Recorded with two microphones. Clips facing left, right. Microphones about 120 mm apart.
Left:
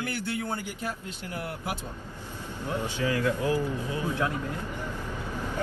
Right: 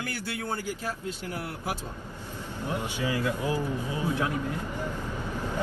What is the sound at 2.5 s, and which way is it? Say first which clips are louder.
A man's voice: left 1 dB; 15° right (ahead or behind).